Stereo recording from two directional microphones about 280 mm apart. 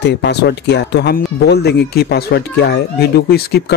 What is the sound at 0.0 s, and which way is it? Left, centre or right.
Speech, left.